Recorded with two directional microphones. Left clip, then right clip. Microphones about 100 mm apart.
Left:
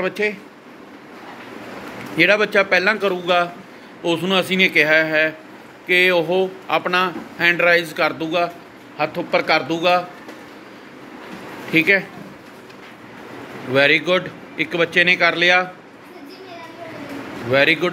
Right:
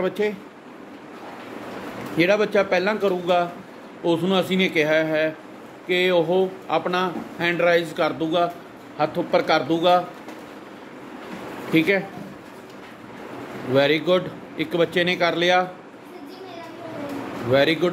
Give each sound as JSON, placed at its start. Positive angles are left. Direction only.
{"t": 0.0, "sound": "a man's voice", "side_deg": -25}
{"t": 2.1, "sound": "speech", "side_deg": -15}
{"t": 8.9, "sound": "a man's voice", "side_deg": -30}
{"t": 11.7, "sound": "a man's voice", "side_deg": -20}
{"t": 13.7, "sound": "a man's voice", "side_deg": -20}
{"t": 17.5, "sound": "a man's voice", "side_deg": -20}